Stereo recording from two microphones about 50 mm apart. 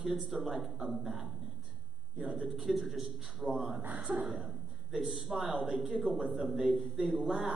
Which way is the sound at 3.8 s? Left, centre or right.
Right.